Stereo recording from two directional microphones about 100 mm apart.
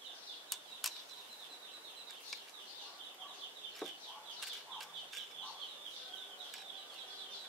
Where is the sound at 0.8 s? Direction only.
Centre (ahead or behind).